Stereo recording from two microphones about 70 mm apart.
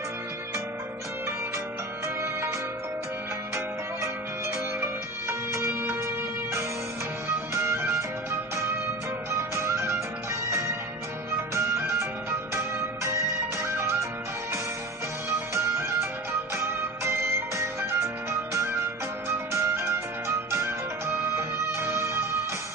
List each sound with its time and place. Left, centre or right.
5.5 s music: right
7.2 s music: right
11.5 s music: right
15.2 s music: right